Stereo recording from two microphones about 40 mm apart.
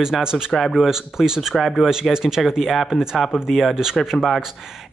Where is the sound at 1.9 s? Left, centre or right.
Centre.